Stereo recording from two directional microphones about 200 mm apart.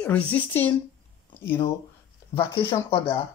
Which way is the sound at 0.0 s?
5° left (ahead or behind).